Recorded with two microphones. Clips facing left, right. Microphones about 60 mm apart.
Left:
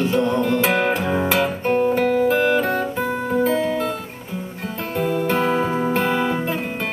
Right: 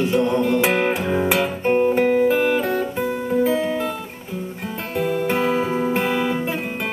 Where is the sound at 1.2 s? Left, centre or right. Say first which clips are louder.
Even; centre.